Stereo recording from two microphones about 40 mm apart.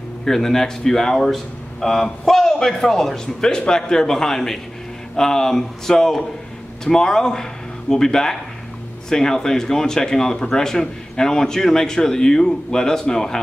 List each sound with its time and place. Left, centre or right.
0.2 s speech: centre